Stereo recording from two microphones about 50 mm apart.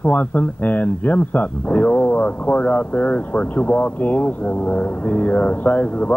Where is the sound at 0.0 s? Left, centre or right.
Left.